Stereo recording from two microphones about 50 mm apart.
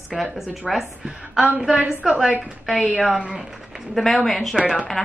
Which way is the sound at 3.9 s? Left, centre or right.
Centre.